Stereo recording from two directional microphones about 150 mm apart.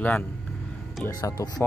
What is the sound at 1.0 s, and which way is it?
Speech, 20° left (ahead or behind).